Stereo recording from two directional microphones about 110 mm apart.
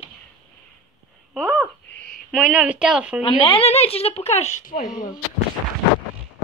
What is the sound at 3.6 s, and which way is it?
Speech, 70° left (ahead or behind).